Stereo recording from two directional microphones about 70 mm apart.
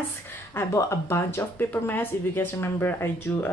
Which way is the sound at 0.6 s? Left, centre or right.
Left.